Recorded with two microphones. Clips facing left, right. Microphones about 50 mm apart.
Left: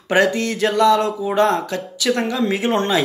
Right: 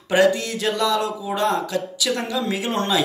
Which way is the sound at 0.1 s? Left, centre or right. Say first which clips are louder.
Left 1 dB; left.